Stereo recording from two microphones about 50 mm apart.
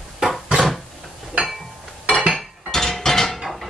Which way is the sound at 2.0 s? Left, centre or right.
Centre.